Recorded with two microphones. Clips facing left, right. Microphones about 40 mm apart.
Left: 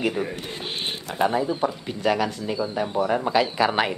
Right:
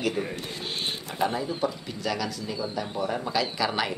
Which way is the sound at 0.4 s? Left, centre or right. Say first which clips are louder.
Left 2 dB; left.